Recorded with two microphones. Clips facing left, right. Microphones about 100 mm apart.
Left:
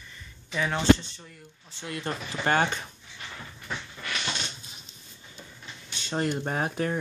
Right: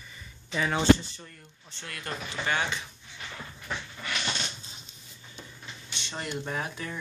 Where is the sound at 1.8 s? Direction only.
25° left (ahead or behind).